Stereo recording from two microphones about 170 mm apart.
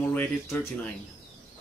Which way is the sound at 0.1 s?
10° left (ahead or behind).